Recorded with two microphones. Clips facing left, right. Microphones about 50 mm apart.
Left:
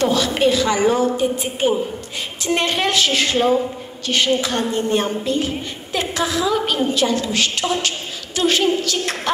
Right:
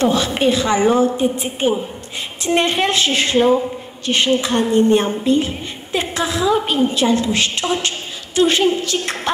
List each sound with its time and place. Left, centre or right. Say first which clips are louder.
0.0 s a woman's voice: right 1 dB; right